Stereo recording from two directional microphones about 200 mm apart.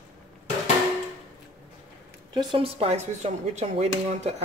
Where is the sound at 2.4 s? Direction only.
25° right (ahead or behind).